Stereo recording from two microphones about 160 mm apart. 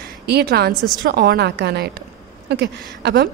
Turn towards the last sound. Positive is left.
turn(degrees=-90)